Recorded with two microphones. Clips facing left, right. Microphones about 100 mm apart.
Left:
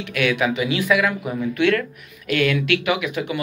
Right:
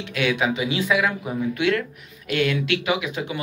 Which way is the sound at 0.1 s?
25° right (ahead or behind).